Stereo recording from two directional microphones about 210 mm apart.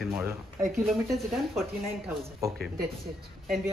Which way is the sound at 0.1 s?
15° right (ahead or behind).